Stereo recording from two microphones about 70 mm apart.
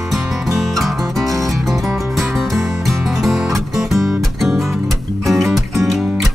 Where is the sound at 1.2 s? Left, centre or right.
Right.